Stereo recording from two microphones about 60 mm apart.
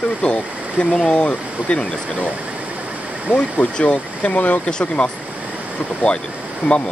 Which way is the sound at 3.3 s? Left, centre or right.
Left.